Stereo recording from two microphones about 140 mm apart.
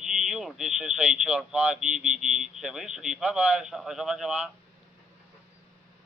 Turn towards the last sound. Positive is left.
turn(degrees=-5)  # may be behind; listen again after turning